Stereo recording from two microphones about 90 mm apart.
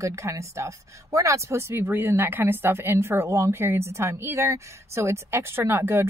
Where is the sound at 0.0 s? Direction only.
35° right (ahead or behind).